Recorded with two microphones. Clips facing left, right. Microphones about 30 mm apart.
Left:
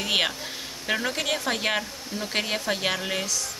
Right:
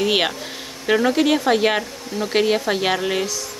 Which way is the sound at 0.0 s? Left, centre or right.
Centre.